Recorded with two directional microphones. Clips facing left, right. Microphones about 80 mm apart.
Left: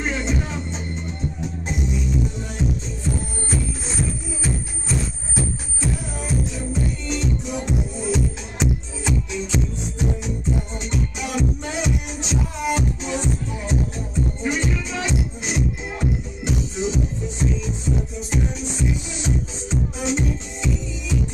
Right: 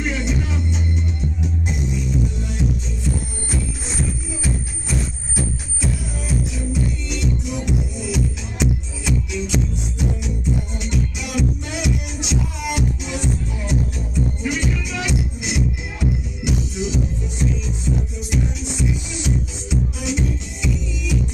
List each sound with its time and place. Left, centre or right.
0.0 s music: left
6.7 s music: left
19.2 s music: left